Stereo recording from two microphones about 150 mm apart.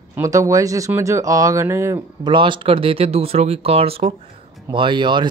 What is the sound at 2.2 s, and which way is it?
Speech, 35° right (ahead or behind).